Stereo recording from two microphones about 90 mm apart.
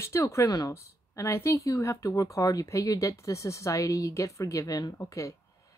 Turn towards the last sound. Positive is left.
turn(degrees=35)  # may be behind; listen again after turning